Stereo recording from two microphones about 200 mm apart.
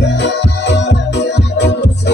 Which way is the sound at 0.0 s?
60° left (ahead or behind).